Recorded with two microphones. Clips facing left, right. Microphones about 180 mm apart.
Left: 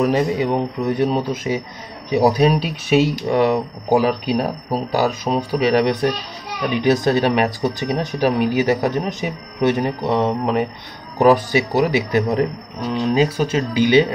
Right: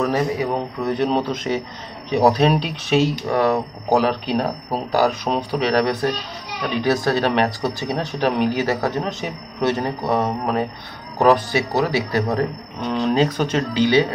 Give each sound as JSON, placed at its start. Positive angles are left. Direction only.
{"t": 0.0, "sound": "speech", "side_deg": 20}
{"t": 3.3, "sound": "speech", "side_deg": 20}
{"t": 5.3, "sound": "speech", "side_deg": 0}
{"t": 5.6, "sound": "speech", "side_deg": 15}
{"t": 12.8, "sound": "speech", "side_deg": 5}